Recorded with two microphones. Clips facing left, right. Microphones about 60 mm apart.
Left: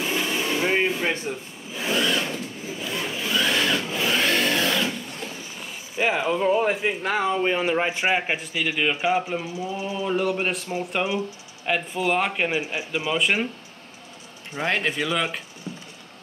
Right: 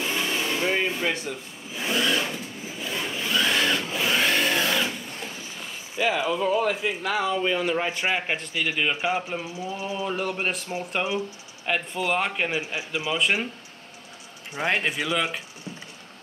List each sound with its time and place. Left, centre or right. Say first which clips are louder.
0.0 s a sound: left 2 dB; centre
1.0 s a man's voice: left 1 dB; left
1.7 s a sound: left 1 dB; centre
5.9 s speech: left 1 dB; left
7.9 s a man's voice: left 3 dB; left
8.3 s a man's voice: left 1 dB; centre
14.5 s a man's voice: left 1 dB; centre